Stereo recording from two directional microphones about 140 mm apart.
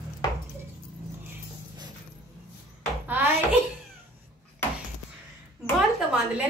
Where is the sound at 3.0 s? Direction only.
15° right (ahead or behind).